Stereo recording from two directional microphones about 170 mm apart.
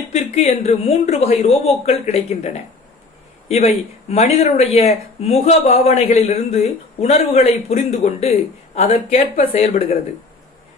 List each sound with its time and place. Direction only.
0.1 s speech: 40° left (ahead or behind)